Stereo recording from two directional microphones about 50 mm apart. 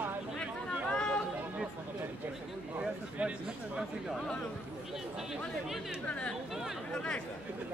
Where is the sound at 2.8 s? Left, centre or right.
Right.